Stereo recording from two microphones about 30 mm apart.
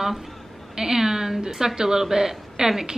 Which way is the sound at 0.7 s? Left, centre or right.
Centre.